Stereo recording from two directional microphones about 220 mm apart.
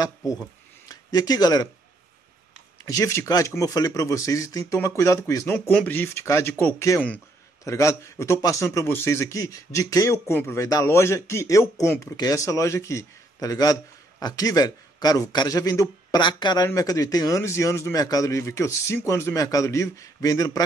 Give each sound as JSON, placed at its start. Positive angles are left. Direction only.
{"t": 0.8, "sound": "speech", "side_deg": 15}
{"t": 2.8, "sound": "a man's voice", "side_deg": 15}